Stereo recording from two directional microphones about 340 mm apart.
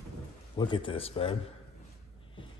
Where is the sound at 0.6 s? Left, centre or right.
Centre.